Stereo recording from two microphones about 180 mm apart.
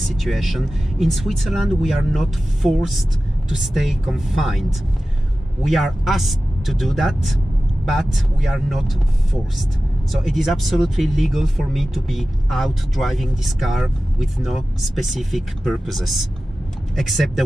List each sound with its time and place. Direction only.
0.0 s speech: centre (ahead or behind)
10.1 s speech: centre (ahead or behind)